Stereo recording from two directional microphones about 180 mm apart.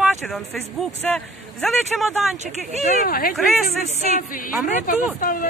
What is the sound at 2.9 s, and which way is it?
Speech, 55° left (ahead or behind).